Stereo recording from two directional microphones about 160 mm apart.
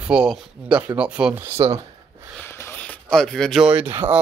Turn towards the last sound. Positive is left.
turn(degrees=-5)  # may be behind; listen again after turning